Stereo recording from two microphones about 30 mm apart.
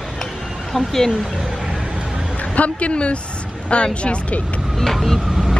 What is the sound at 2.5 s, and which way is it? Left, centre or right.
A woman's voice, left.